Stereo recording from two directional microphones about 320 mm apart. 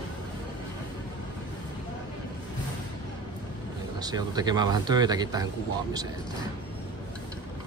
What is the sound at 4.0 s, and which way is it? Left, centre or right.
A man's voice, centre.